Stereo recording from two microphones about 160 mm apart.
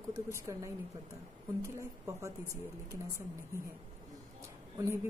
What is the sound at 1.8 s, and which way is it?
A woman's voice, 20° right (ahead or behind).